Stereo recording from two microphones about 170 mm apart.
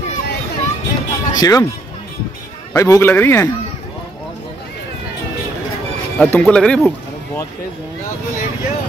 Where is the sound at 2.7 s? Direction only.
15° left (ahead or behind).